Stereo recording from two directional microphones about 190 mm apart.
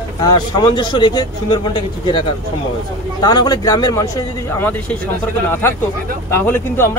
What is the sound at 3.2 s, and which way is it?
A man's voice, 20° left (ahead or behind).